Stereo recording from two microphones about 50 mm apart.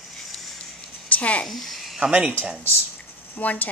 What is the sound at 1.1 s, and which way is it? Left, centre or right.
Speech, left.